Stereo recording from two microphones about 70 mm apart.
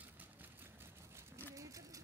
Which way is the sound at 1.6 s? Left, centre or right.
Right.